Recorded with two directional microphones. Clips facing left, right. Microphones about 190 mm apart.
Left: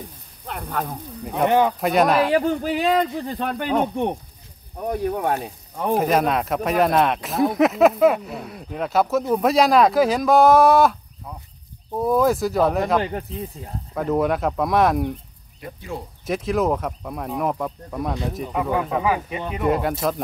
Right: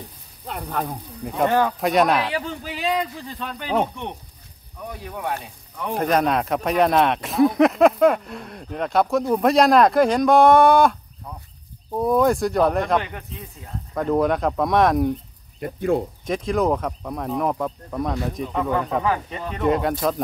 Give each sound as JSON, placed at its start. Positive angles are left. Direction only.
{"t": 0.5, "sound": "speech", "side_deg": 0}
{"t": 1.4, "sound": "speech", "side_deg": 20}
{"t": 1.8, "sound": "speech", "side_deg": 0}
{"t": 2.3, "sound": "speech", "side_deg": 50}
{"t": 5.9, "sound": "speech", "side_deg": 5}
{"t": 12.0, "sound": "speech", "side_deg": 0}
{"t": 13.0, "sound": "speech", "side_deg": 35}
{"t": 13.9, "sound": "speech", "side_deg": 5}
{"t": 15.6, "sound": "speech", "side_deg": -55}
{"t": 16.3, "sound": "speech", "side_deg": 5}